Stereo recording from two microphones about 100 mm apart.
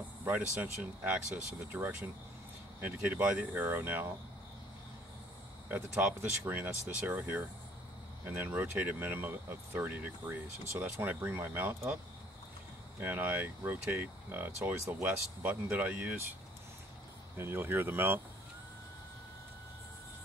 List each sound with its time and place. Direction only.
0.2 s speech: 15° right (ahead or behind)
5.7 s speech: 10° right (ahead or behind)
13.0 s speech: 15° right (ahead or behind)
17.4 s speech: 20° right (ahead or behind)